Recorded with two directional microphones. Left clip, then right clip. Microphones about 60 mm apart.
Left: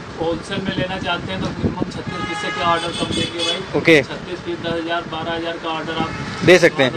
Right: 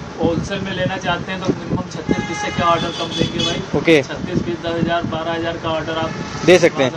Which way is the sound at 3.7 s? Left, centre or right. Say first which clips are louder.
Left 1 dB; centre.